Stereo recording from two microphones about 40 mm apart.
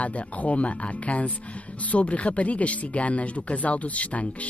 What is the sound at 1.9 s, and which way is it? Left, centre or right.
Speech, left.